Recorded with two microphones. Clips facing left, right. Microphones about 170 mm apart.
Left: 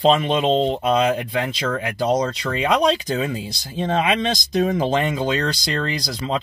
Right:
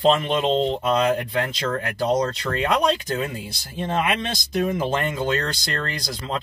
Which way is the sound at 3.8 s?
90° left.